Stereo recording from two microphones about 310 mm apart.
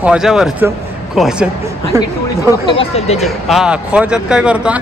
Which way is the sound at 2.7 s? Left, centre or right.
Centre.